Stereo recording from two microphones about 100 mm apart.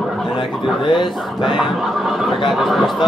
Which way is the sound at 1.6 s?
Centre (ahead or behind).